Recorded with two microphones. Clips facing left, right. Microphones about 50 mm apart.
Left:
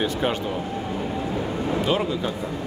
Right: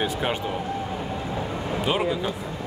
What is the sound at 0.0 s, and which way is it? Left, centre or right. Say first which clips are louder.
Speech: left 2 dB; centre.